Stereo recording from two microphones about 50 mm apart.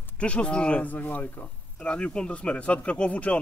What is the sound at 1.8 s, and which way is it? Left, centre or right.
Speech, centre.